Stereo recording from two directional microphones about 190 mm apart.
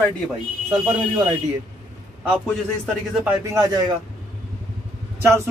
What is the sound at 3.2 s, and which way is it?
Speech, 15° right (ahead or behind).